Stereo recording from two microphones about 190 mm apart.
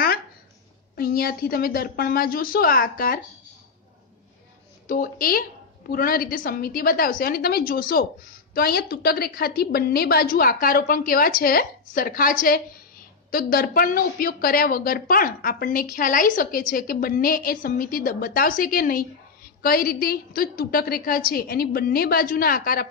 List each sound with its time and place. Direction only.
0.9 s a woman's voice: 50° left (ahead or behind)
4.8 s a woman's voice: 50° left (ahead or behind)